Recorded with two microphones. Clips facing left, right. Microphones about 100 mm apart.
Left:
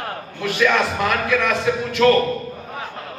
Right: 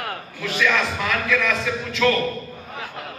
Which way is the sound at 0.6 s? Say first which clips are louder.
Left 4 dB; 55° left (ahead or behind).